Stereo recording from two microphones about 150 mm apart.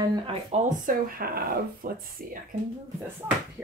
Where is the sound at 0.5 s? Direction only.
60° right (ahead or behind).